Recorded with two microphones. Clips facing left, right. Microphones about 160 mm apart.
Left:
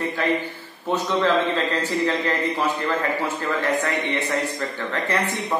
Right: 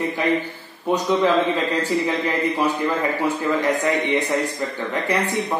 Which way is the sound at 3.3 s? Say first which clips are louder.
Right 3 dB; 15° right (ahead or behind).